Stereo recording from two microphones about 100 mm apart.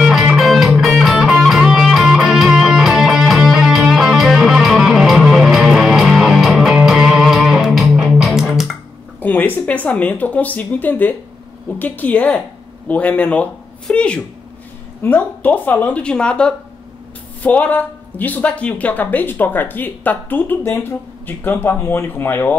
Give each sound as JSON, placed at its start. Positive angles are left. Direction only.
{"t": 0.0, "sound": "music", "side_deg": -5}
{"t": 9.2, "sound": "speech", "side_deg": 20}